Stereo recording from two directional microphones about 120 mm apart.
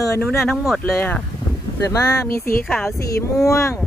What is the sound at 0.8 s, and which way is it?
Speech, 15° left (ahead or behind).